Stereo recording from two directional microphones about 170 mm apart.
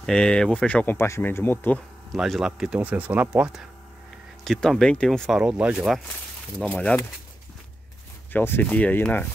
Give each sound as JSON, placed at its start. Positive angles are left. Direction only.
{"t": 0.0, "sound": "speech", "side_deg": 5}
{"t": 2.1, "sound": "speech", "side_deg": 0}
{"t": 6.6, "sound": "speech", "side_deg": 10}
{"t": 8.3, "sound": "speech", "side_deg": 10}